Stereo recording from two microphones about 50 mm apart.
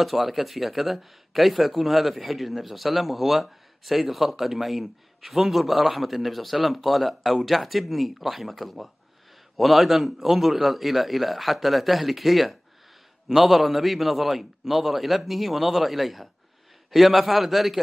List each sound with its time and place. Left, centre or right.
0.0 s speech: centre